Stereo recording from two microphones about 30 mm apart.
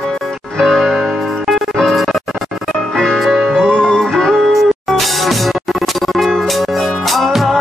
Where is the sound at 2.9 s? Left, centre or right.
Centre.